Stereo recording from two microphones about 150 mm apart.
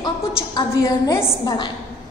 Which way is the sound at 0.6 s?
20° left (ahead or behind).